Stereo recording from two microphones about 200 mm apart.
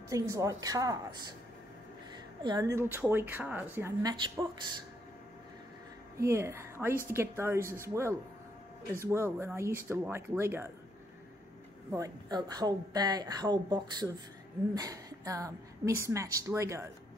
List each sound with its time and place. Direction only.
0.1 s a woman's voice: 15° right (ahead or behind)
2.4 s a woman's voice: 20° right (ahead or behind)
6.1 s a woman's voice: 15° right (ahead or behind)
11.9 s a woman's voice: 20° right (ahead or behind)